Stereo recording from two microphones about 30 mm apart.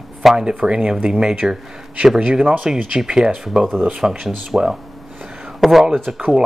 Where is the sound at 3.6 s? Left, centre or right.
Centre.